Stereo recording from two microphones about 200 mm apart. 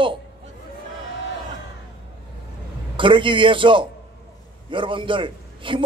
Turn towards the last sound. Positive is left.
turn(degrees=-25)  # may be behind; listen again after turning